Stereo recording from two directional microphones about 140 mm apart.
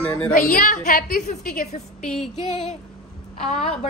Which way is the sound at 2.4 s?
55° left (ahead or behind).